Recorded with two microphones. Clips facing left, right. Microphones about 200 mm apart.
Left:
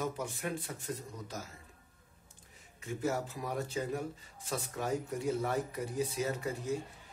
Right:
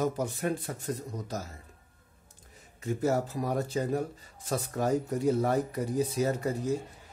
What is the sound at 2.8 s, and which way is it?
A man's voice, 40° right (ahead or behind).